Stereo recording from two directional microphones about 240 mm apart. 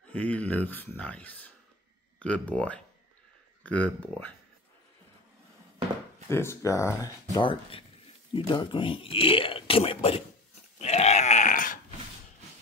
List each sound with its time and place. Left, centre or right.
0.1 s speech: centre
6.2 s speech: centre
10.8 s grunt: left